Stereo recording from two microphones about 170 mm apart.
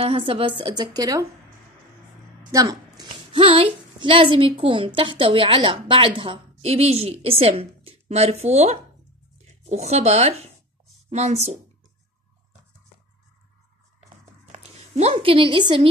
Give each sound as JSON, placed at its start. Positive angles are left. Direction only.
{"t": 0.0, "sound": "a woman's voice", "side_deg": -35}
{"t": 2.5, "sound": "a woman's voice", "side_deg": -20}
{"t": 14.5, "sound": "speech", "side_deg": -40}